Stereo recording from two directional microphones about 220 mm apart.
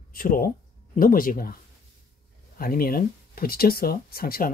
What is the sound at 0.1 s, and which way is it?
Speech, 40° left (ahead or behind).